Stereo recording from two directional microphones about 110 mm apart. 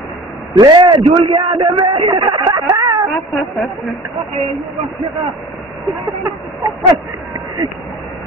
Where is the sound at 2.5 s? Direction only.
30° right (ahead or behind).